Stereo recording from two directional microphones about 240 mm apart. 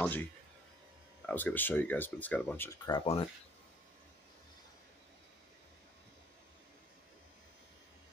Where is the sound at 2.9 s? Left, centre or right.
Left.